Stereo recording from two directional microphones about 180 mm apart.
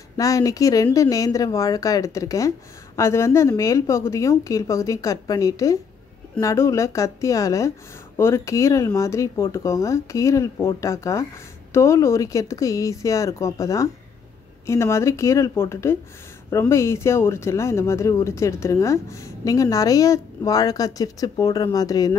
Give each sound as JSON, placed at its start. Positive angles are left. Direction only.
{"t": 0.2, "sound": "speech", "side_deg": 20}